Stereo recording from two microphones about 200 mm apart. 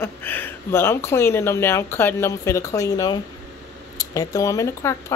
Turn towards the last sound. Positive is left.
turn(degrees=15)  # may be behind; listen again after turning